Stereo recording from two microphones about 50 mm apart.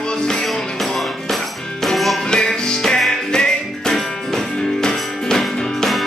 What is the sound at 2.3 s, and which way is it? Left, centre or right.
Music, centre.